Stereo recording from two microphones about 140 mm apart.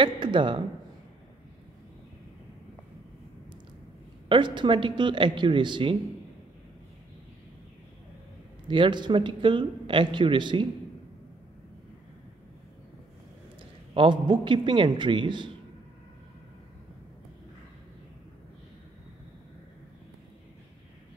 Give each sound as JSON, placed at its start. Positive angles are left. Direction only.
{"t": 0.0, "sound": "speech", "side_deg": -35}
{"t": 4.3, "sound": "speech", "side_deg": -35}
{"t": 8.6, "sound": "speech", "side_deg": -35}
{"t": 13.9, "sound": "speech", "side_deg": -35}